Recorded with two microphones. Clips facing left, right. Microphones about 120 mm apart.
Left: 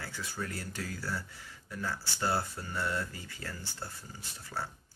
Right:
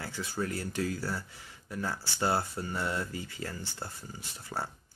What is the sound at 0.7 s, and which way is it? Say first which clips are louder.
Speech: right 5 dB; 20° right (ahead or behind).